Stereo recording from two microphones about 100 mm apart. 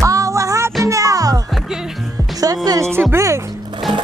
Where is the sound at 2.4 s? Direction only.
40° right (ahead or behind).